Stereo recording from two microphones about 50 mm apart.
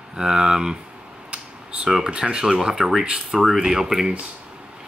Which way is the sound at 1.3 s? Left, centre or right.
Right.